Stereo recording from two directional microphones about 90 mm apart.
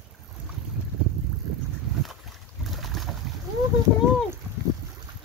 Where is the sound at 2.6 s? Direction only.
Centre (ahead or behind).